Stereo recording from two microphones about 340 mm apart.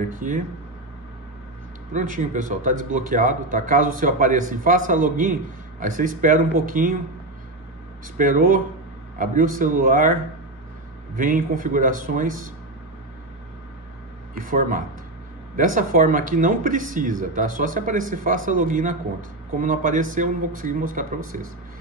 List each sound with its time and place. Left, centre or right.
0.1 s speech: right
1.9 s speech: right
8.2 s speech: right
11.1 s speech: right
14.3 s speech: right